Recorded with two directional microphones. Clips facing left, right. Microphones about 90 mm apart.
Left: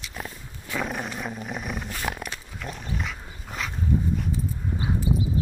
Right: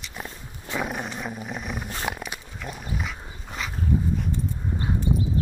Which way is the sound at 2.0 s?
5° right (ahead or behind).